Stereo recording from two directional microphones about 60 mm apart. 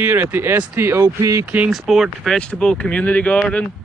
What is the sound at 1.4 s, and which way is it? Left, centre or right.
Speech, right.